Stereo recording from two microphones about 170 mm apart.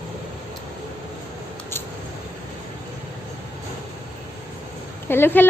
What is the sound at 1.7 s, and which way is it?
Scissors, 15° left (ahead or behind).